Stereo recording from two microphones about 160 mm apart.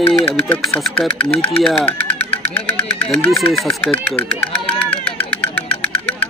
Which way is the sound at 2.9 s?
5° left (ahead or behind).